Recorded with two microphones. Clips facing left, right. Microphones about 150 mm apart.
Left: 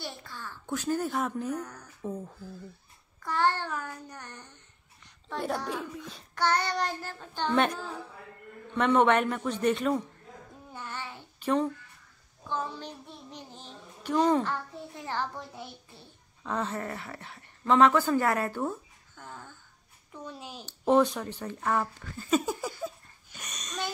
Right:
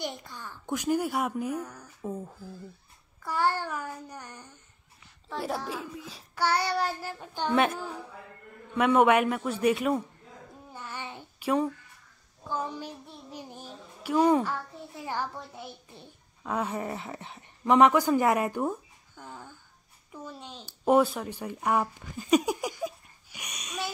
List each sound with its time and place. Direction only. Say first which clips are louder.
0.0 s child singing: right 4 dB; 15° right (ahead or behind)
5.0 s a child's voice: left 1 dB; centre (ahead or behind)
8.7 s child singing: right 2 dB; 10° right (ahead or behind)
11.3 s speech: even; 10° right (ahead or behind)
12.4 s child singing: right 1 dB; 10° right (ahead or behind)
15.9 s speech: right 3 dB; 15° right (ahead or behind)
20.1 s a child's voice: even; centre (ahead or behind)
20.6 s speech: right 1 dB; 10° right (ahead or behind)